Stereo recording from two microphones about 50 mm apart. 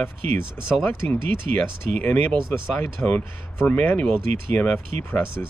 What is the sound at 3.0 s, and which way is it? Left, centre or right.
Speech, left.